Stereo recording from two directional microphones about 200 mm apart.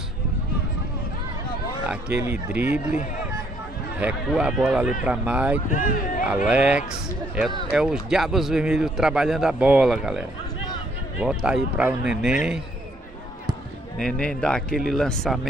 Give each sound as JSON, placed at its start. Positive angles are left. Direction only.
{"t": 2.2, "sound": "speech", "side_deg": -10}
{"t": 4.0, "sound": "a man's voice", "side_deg": -5}
{"t": 5.7, "sound": "speech", "side_deg": 40}
{"t": 6.2, "sound": "a man's voice", "side_deg": -5}
{"t": 13.5, "sound": "a man's voice", "side_deg": 0}